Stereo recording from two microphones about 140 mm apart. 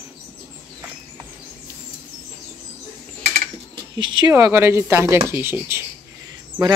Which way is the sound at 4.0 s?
35° right (ahead or behind).